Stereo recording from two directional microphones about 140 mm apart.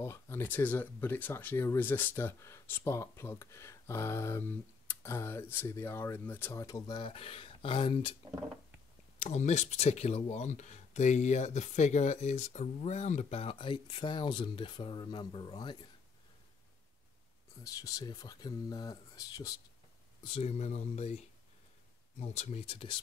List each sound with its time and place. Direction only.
0.0 s speech: 20° left (ahead or behind)
7.0 s speech: 40° left (ahead or behind)
9.2 s speech: 55° left (ahead or behind); by 15.8 s 35° left (ahead or behind)
17.7 s speech: 25° left (ahead or behind)
20.2 s speech: 45° left (ahead or behind)
22.2 s speech: 55° left (ahead or behind)